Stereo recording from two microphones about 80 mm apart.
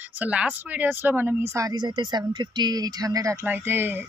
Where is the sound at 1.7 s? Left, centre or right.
Right.